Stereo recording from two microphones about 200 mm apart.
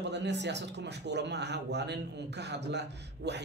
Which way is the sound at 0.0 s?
60° right (ahead or behind).